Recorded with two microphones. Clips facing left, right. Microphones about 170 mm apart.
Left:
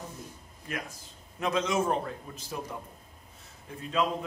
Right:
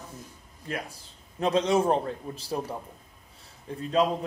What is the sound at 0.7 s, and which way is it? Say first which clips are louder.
A man's voice: right 3 dB; 30° right (ahead or behind).